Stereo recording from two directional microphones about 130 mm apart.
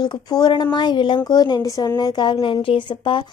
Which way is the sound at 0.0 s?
35° left (ahead or behind).